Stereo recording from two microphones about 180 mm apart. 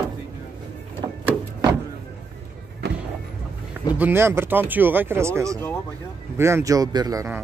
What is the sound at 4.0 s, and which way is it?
Speech, 15° right (ahead or behind).